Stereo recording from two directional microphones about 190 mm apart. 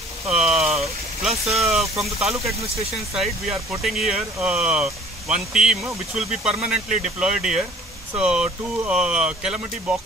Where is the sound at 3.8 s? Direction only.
Centre (ahead or behind).